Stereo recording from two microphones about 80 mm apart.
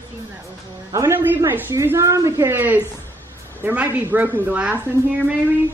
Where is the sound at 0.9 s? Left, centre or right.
Right.